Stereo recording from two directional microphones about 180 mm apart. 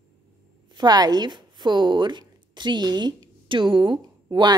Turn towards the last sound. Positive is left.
turn(degrees=-25)  # may be behind; listen again after turning